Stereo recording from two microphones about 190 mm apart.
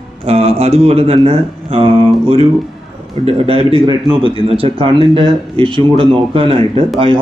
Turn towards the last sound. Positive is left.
turn(degrees=-30)  # may be behind; listen again after turning